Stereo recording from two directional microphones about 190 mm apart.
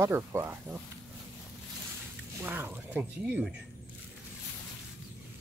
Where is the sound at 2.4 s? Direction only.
10° right (ahead or behind).